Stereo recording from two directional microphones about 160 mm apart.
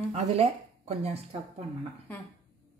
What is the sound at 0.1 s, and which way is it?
Speech, 40° right (ahead or behind).